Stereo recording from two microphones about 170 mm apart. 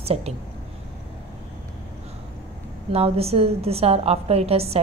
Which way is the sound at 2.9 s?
35° right (ahead or behind).